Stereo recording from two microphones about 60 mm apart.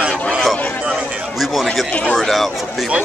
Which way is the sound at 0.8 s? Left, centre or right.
Centre.